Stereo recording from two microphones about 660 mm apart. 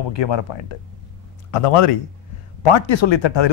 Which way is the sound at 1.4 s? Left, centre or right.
Left.